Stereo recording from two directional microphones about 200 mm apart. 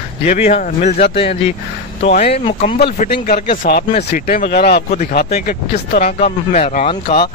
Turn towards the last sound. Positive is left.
turn(degrees=30)  # may be behind; listen again after turning